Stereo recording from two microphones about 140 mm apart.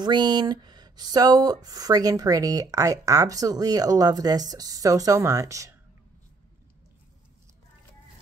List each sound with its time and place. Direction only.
0.0 s speech: 30° right (ahead or behind)